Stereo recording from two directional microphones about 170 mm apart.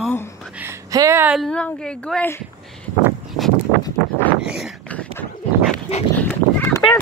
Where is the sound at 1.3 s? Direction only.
5° left (ahead or behind).